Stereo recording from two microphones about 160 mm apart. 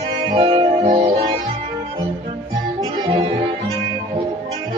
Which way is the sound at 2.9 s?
30° right (ahead or behind).